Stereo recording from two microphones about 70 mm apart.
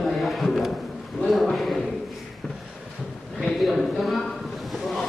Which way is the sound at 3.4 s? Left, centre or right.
Centre.